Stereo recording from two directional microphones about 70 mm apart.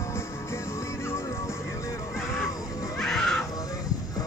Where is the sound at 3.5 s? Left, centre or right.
Left.